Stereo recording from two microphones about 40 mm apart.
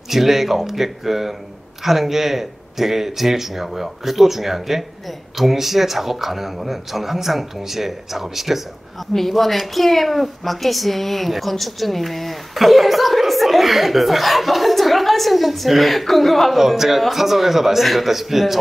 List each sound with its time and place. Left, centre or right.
0.1 s a woman's voice: centre